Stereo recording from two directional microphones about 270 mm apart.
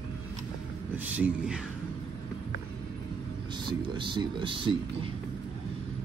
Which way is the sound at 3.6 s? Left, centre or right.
Centre.